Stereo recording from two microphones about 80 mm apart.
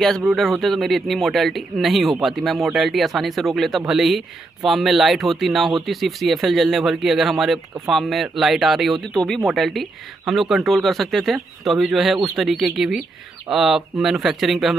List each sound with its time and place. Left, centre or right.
0.0 s speech: centre
9.1 s speech: centre